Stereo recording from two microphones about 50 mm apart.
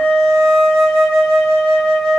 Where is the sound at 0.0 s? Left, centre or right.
Centre.